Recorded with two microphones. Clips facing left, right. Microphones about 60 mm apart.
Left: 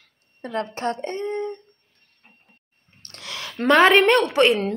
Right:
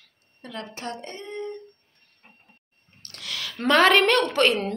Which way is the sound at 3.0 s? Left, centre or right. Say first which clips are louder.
Even; left.